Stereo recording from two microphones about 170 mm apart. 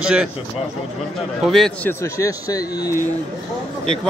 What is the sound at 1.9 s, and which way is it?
Speech, 20° left (ahead or behind).